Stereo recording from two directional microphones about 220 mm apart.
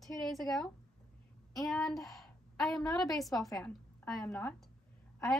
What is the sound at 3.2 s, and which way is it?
Speech, centre (ahead or behind).